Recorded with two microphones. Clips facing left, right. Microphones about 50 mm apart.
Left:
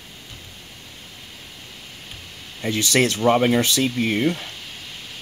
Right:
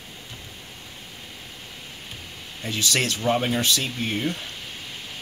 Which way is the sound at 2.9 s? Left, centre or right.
Left.